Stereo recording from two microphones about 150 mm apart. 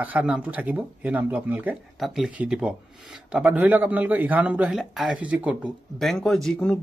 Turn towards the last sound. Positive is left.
turn(degrees=5)  # may be behind; listen again after turning